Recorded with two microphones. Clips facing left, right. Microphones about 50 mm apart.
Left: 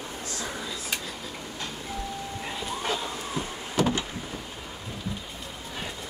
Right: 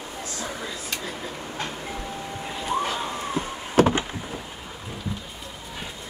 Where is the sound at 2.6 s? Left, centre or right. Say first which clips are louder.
Right 5 dB; right.